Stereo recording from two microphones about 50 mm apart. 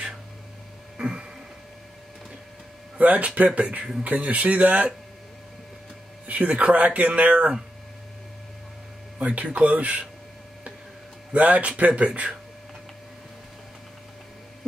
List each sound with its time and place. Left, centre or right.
0.9 s a sound: centre
3.0 s speech: right
6.2 s speech: right
9.2 s speech: right
11.3 s speech: right